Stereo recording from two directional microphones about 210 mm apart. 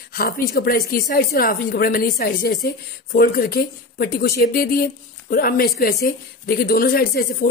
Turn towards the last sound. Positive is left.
turn(degrees=45)  # may be behind; listen again after turning